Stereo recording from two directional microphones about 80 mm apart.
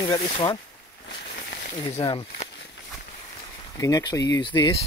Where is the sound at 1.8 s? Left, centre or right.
Left.